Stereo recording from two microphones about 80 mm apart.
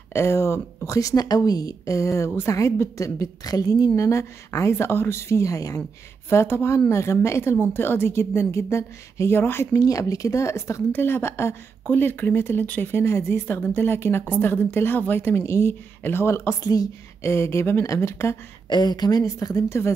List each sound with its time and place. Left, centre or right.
0.1 s speech: left
6.2 s speech: left
16.6 s speech: left
17.2 s speech: left
18.7 s speech: left